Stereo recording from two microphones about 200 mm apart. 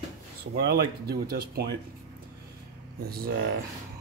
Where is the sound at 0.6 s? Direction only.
55° right (ahead or behind).